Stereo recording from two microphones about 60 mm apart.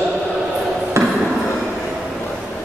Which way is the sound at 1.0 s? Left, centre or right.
Right.